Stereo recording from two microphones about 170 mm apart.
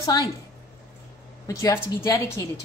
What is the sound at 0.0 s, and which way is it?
Speech, 20° left (ahead or behind).